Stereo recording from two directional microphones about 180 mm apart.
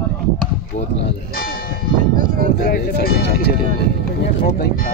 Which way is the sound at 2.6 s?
55° left (ahead or behind).